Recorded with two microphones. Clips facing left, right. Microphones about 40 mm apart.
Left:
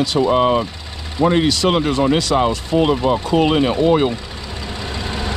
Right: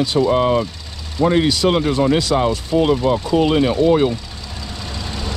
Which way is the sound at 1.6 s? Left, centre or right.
Left.